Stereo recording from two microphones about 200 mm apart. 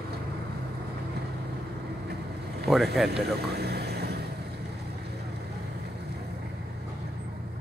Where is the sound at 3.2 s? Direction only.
55° right (ahead or behind).